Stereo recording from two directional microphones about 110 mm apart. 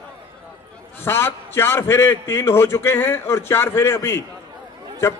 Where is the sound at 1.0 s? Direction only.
20° left (ahead or behind).